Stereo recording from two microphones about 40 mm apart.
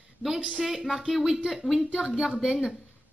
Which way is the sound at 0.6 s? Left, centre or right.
Centre.